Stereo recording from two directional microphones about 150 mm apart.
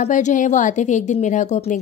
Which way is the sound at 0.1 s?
55° left (ahead or behind).